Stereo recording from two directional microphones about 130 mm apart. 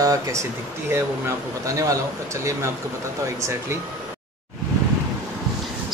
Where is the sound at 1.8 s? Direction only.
25° right (ahead or behind).